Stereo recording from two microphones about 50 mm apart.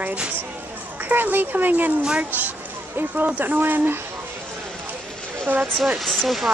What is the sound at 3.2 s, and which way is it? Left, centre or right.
Speech, right.